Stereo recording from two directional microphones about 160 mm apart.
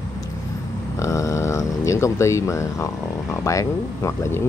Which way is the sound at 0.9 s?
20° left (ahead or behind).